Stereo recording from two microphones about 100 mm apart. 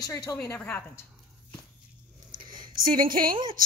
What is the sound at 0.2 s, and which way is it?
Speech, 30° left (ahead or behind).